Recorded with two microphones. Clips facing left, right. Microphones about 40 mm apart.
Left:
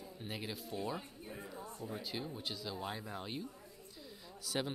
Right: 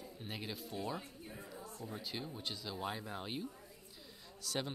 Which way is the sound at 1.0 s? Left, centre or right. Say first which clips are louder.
Left 2 dB; centre.